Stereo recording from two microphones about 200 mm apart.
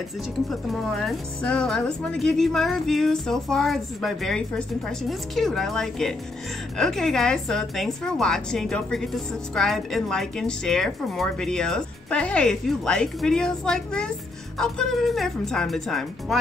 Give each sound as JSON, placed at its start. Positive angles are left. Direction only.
{"t": 1.0, "sound": "a woman's voice", "side_deg": 5}